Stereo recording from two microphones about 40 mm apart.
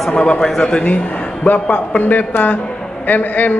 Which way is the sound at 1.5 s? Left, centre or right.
Left.